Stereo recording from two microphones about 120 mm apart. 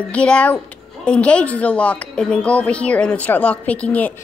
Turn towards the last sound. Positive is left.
turn(degrees=10)  # may be behind; listen again after turning